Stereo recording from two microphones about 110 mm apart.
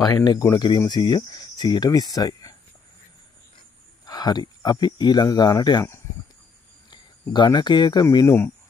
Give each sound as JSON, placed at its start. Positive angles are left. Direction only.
{"t": 0.0, "sound": "speech", "side_deg": 35}
{"t": 4.0, "sound": "speech", "side_deg": 35}
{"t": 6.9, "sound": "speech", "side_deg": 45}